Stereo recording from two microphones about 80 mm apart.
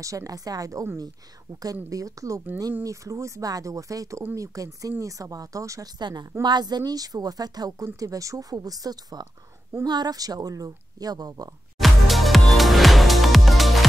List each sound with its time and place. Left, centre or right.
0.0 s speech: right
1.9 s speech: right
5.9 s a woman's voice: right
11.8 s music: centre